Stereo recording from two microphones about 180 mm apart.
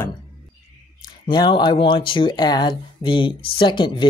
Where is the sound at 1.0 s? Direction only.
25° left (ahead or behind).